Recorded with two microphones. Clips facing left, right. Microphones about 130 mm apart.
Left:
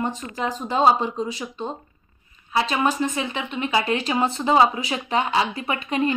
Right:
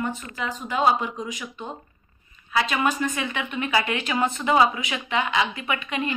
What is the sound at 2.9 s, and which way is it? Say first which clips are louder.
Speech: left 2 dB; 25° left (ahead or behind).